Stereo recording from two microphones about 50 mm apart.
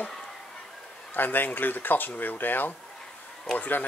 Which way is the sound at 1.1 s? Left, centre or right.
Left.